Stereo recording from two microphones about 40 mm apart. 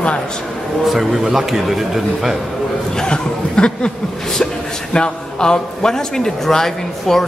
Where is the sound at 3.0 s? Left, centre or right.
Left.